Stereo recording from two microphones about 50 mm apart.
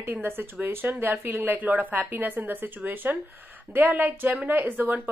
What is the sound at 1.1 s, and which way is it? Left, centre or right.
A woman's voice, right.